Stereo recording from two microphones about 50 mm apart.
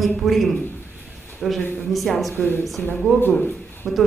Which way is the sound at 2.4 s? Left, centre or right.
Left.